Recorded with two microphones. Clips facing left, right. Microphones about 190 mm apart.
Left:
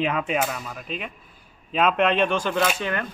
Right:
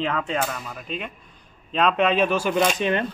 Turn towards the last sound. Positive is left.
turn(degrees=-20)  # may be behind; listen again after turning